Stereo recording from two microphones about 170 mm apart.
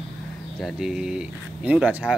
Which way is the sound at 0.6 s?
Centre (ahead or behind).